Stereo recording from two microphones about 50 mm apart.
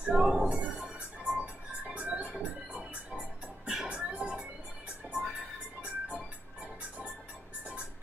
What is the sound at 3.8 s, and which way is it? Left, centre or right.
Music, right.